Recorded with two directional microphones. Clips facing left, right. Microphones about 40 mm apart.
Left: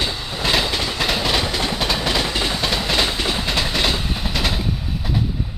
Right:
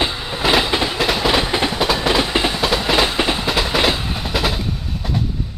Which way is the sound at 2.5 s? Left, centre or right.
Centre.